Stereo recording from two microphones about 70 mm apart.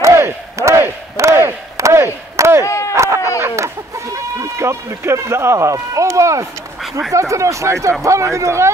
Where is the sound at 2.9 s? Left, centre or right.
Right.